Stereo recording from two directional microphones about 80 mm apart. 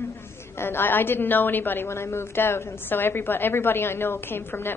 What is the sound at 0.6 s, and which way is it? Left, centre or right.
A woman's voice, left.